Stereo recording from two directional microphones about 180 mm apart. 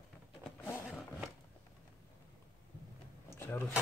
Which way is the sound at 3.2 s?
15° left (ahead or behind).